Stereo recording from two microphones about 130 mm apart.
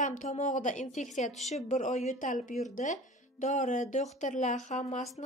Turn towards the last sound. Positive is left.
turn(degrees=70)  # may be behind; listen again after turning